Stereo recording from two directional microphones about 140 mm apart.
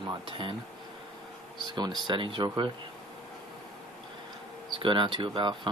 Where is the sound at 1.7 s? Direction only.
30° right (ahead or behind).